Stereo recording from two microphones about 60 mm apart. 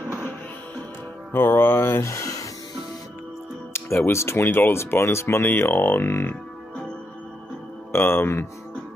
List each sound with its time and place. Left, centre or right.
1.3 s speech: left
3.7 s speech: left
7.9 s speech: left